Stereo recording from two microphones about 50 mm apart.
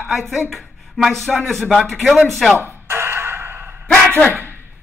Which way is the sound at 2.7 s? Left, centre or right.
Right.